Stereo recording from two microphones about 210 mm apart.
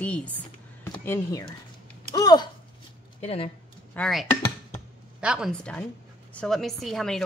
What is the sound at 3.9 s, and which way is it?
Speech, centre (ahead or behind).